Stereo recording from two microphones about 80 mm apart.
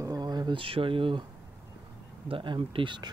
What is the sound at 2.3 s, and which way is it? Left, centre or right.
Speech, right.